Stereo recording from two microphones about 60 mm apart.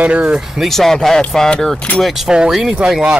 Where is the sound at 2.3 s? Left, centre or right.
Centre.